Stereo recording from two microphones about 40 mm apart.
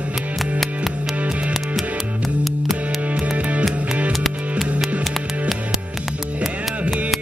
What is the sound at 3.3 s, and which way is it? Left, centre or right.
Music, right.